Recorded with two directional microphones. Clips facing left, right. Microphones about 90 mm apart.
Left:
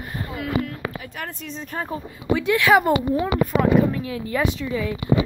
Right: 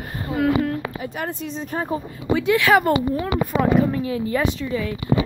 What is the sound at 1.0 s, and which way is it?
Speech, 20° right (ahead or behind).